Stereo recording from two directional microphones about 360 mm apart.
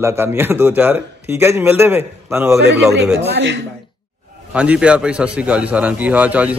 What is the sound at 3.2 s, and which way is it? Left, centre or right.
Speech, right.